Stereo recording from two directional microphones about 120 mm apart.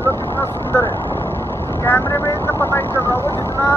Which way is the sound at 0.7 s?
20° left (ahead or behind).